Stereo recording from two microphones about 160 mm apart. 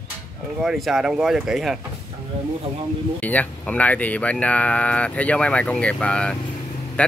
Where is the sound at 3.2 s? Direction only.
10° left (ahead or behind).